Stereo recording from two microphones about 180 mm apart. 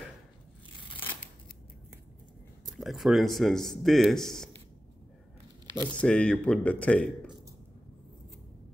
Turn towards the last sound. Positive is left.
turn(degrees=5)  # may be behind; listen again after turning